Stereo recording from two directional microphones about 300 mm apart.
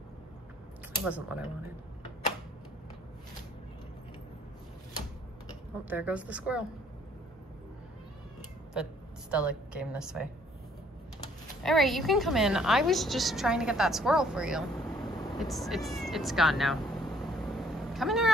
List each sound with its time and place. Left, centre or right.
1.0 s a woman's voice: centre
5.9 s a woman's voice: centre
9.3 s a woman's voice: centre
11.6 s a woman's voice: centre
15.3 s vehicle: centre